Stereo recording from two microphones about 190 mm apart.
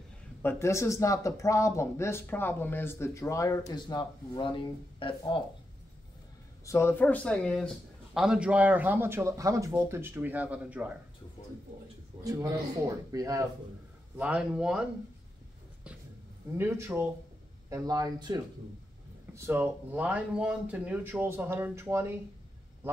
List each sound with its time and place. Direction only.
0.4 s speech: 15° left (ahead or behind)
6.6 s a man's voice: 15° left (ahead or behind); by 11.0 s 5° right (ahead or behind)
12.2 s a man's voice: 20° right (ahead or behind)
14.1 s a man's voice: 5° right (ahead or behind)
16.5 s a man's voice: 15° right (ahead or behind)